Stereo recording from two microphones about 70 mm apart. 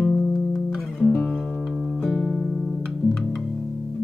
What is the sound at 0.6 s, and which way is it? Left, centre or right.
Guitar, left.